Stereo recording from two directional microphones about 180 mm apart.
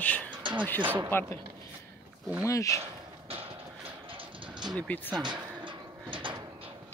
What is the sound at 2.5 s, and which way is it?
Speech, 15° left (ahead or behind).